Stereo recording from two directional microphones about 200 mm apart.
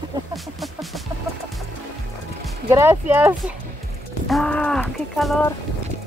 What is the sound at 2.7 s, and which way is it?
Speech, 15° right (ahead or behind).